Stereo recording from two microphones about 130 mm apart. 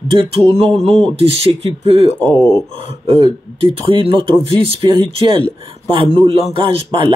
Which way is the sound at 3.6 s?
45° right (ahead or behind).